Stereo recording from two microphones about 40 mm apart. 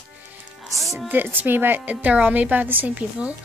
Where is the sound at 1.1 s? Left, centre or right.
Right.